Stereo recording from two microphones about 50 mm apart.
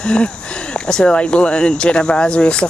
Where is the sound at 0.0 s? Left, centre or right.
Left.